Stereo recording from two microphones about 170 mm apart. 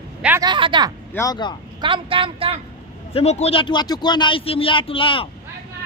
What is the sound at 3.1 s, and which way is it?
Speech, 40° left (ahead or behind).